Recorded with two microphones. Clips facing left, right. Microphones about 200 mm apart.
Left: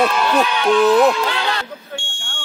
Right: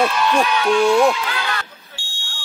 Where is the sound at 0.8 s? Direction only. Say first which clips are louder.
Left 2 dB; 5° left (ahead or behind).